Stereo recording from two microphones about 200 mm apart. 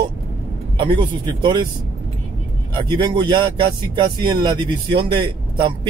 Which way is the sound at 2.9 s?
20° right (ahead or behind).